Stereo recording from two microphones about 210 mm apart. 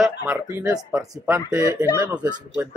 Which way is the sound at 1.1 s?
10° right (ahead or behind).